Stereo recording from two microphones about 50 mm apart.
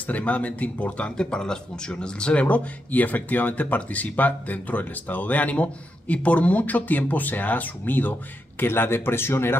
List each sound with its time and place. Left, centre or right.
0.0 s speech: left